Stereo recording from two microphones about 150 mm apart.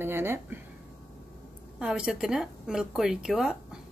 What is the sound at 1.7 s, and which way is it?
A woman's voice, 5° right (ahead or behind).